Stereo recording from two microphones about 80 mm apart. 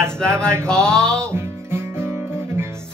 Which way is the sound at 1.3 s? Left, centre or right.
Right.